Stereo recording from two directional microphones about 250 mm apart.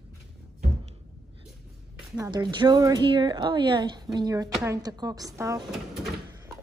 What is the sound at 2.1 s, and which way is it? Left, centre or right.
Speech, centre.